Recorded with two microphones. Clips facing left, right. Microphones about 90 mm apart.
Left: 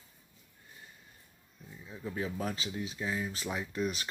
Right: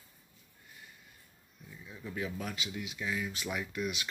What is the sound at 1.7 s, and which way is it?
Speech, 30° left (ahead or behind).